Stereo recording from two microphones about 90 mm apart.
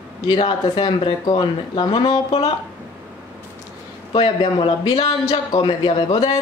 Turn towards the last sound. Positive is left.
turn(degrees=65)  # may be behind; listen again after turning